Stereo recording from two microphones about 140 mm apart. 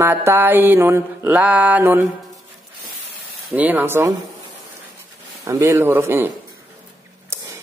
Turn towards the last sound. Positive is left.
turn(degrees=-20)  # may be behind; listen again after turning